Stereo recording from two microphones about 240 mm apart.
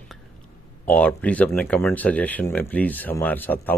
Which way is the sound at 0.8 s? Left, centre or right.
Centre.